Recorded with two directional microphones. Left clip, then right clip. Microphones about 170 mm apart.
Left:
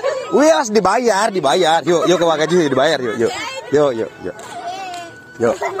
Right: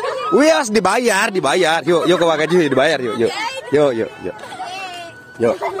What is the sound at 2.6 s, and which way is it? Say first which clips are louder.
Speech: even; 20° right (ahead or behind).